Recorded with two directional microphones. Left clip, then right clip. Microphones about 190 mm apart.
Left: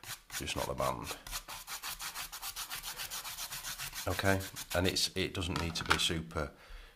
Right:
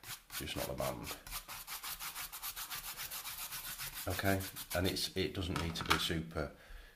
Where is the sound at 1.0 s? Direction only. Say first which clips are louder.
Left 4 dB; 15° left (ahead or behind).